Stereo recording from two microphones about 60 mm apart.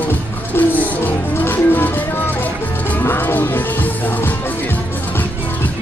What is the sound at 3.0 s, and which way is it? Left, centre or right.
Music, left.